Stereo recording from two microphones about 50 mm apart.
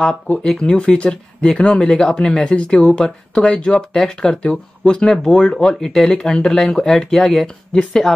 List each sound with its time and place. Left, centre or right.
0.5 s speech: centre